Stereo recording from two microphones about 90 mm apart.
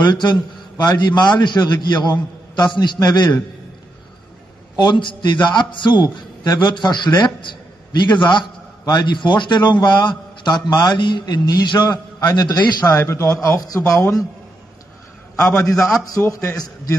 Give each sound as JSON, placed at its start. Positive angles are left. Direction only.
{"t": 0.0, "sound": "a man's voice", "side_deg": 55}
{"t": 4.7, "sound": "a man's voice", "side_deg": 60}
{"t": 12.9, "sound": "a man's voice", "side_deg": 25}
{"t": 16.3, "sound": "a man's voice", "side_deg": 30}